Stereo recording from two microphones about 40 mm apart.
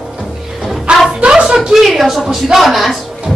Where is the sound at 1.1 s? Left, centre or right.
Right.